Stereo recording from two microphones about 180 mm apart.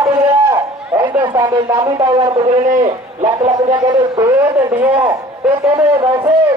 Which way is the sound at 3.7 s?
20° right (ahead or behind).